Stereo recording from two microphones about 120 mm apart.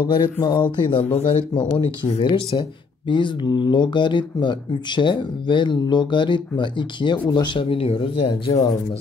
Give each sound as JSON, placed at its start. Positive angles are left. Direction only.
{"t": 0.0, "sound": "speech", "side_deg": 35}